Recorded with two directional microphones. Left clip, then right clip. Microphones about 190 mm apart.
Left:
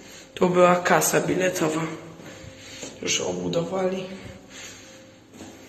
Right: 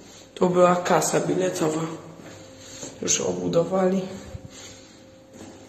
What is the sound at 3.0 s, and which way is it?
A man's voice, 40° right (ahead or behind).